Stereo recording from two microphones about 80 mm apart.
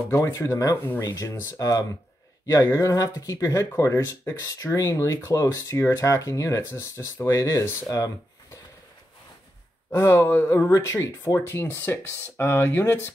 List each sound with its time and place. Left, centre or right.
0.3 s speech: left
1.3 s speech: left
7.9 s a sound: left
9.9 s speech: left